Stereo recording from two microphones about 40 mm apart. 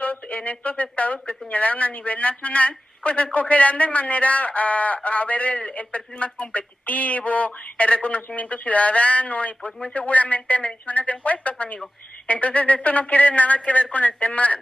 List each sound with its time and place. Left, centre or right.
0.0 s speech: left